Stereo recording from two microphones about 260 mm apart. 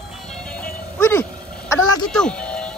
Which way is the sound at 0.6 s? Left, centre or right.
Centre.